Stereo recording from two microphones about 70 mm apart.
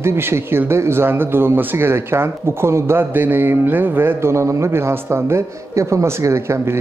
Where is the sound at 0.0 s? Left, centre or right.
Right.